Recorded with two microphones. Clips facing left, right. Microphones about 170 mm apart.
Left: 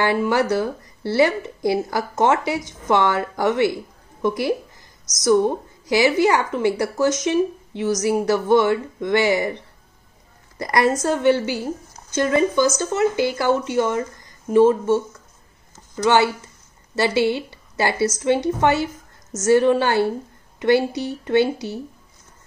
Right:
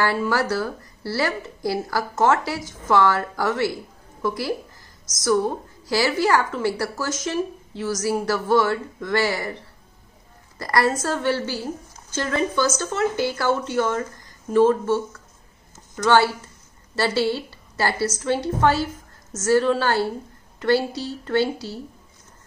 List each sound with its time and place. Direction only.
0.0 s speech: 20° left (ahead or behind)
10.6 s a woman's voice: 20° left (ahead or behind)
16.1 s a woman's voice: 15° left (ahead or behind)